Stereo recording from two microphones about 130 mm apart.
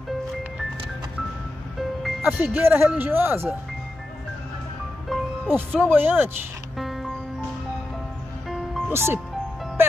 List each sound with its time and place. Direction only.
1.8 s music: centre (ahead or behind)
2.4 s speech: 15° right (ahead or behind)
5.1 s music: centre (ahead or behind)
5.5 s speech: 15° right (ahead or behind)
6.8 s music: centre (ahead or behind)
8.5 s music: centre (ahead or behind)
8.9 s speech: 20° right (ahead or behind)